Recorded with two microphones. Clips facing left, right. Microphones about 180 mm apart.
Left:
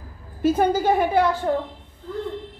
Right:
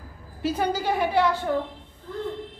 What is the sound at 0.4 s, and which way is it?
A woman's voice, 50° left (ahead or behind).